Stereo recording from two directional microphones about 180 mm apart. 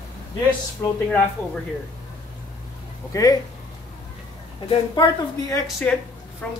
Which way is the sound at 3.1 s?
20° left (ahead or behind).